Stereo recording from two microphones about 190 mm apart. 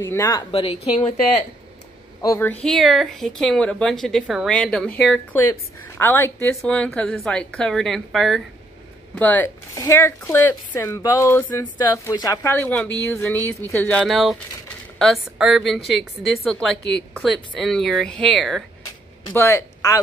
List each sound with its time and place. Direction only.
0.0 s speech: 15° left (ahead or behind)
0.5 s speech: 30° left (ahead or behind)
2.2 s speech: 15° left (ahead or behind)
2.6 s speech: centre (ahead or behind)
19.3 s speech: 15° left (ahead or behind)